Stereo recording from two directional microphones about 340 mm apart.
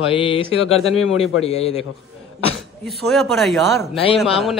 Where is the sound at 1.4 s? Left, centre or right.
Centre.